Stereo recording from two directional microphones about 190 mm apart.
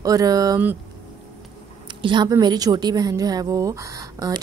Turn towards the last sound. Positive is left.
turn(degrees=-20)  # may be behind; listen again after turning